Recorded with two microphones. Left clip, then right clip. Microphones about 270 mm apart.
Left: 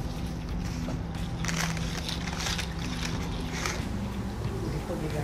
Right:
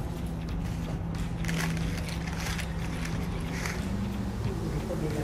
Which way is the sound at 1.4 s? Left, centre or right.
Left.